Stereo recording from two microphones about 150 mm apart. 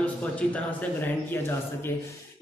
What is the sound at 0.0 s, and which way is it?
Speech, 10° left (ahead or behind).